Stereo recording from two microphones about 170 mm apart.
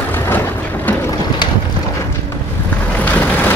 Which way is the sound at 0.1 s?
10° left (ahead or behind).